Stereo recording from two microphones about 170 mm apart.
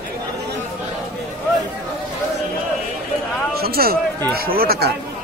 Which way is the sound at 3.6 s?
65° right (ahead or behind).